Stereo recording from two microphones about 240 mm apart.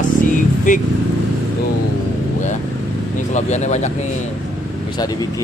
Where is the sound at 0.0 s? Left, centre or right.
Left.